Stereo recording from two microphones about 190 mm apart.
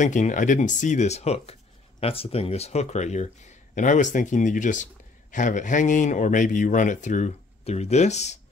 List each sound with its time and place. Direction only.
0.0 s speech: 40° left (ahead or behind)